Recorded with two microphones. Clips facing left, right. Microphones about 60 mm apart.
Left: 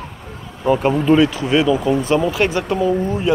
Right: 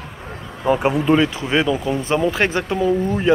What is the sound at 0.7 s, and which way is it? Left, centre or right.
Speech, centre.